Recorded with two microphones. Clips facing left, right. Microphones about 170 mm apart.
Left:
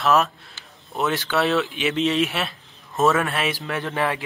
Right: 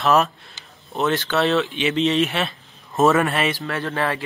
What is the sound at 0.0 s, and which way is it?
A man's voice, centre (ahead or behind).